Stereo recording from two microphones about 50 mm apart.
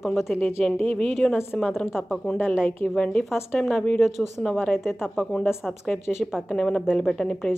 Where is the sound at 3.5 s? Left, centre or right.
Centre.